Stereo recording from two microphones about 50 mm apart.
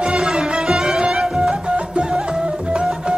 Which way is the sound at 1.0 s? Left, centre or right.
Centre.